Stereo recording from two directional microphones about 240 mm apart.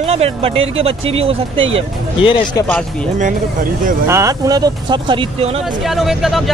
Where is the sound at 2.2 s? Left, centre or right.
Left.